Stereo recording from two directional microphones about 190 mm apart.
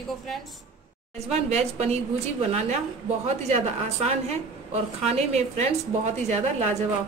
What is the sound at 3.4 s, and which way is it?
A woman's voice, 35° right (ahead or behind).